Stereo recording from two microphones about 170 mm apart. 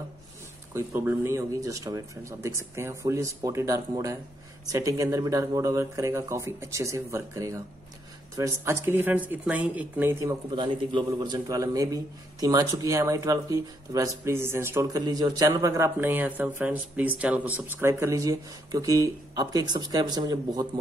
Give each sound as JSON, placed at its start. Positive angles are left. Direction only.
{"t": 0.7, "sound": "a man's voice", "side_deg": -15}
{"t": 10.5, "sound": "a man's voice", "side_deg": -25}